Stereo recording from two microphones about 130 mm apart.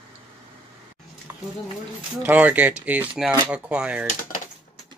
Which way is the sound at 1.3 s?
15° right (ahead or behind).